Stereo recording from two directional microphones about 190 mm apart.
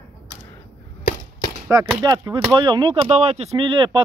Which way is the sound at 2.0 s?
20° right (ahead or behind).